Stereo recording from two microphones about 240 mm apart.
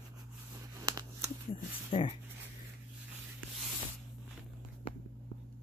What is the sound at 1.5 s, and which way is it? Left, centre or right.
Speech, left.